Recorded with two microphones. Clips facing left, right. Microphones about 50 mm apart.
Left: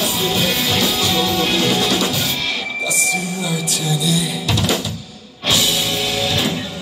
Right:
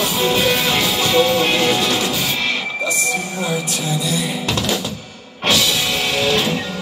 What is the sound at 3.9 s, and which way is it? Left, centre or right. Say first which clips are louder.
Music: left 2 dB; right.